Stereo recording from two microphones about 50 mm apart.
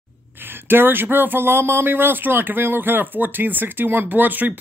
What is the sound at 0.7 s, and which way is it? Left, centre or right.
Speech, right.